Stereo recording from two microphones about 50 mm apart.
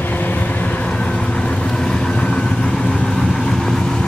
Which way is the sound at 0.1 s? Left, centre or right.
Left.